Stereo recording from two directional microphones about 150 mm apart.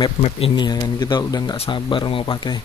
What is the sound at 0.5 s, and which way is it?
Speech, 25° left (ahead or behind).